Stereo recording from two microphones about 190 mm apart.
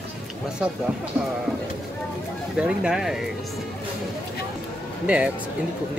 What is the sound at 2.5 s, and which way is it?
Speech, 5° right (ahead or behind).